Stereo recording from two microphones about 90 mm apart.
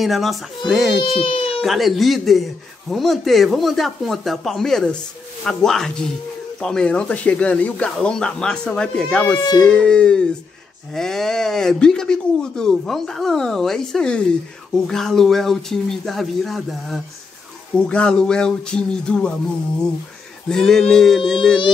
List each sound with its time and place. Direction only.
0.0 s speech: centre (ahead or behind)
1.0 s speech: 90° left
1.6 s speech: centre (ahead or behind)
9.4 s speech: 50° left (ahead or behind)
9.7 s speech: 10° left (ahead or behind)
17.7 s speech: 10° left (ahead or behind)
20.4 s speech: 5° left (ahead or behind)